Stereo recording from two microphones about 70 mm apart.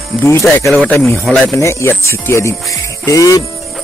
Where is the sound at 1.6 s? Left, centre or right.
Left.